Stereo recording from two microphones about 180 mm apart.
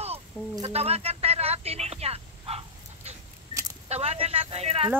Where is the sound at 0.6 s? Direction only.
35° right (ahead or behind).